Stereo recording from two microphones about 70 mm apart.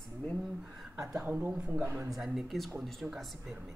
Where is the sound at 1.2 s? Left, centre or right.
Right.